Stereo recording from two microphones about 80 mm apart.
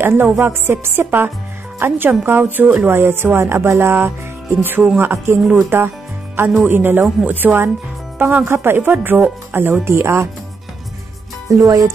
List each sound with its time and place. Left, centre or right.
0.0 s speech: right
6.6 s speech: right
11.4 s speech: right